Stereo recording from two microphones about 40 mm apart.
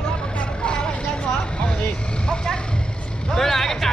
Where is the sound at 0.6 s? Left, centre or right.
Left.